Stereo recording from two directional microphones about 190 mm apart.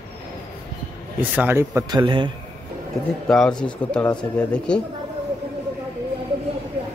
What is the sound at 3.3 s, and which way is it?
Speech, 5° left (ahead or behind).